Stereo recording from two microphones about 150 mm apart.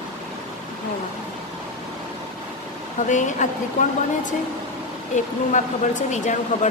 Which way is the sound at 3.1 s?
55° left (ahead or behind).